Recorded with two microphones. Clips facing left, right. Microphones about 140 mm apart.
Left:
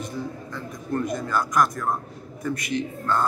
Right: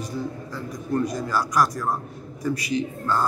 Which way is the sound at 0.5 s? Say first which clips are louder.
Right 2 dB; 5° right (ahead or behind).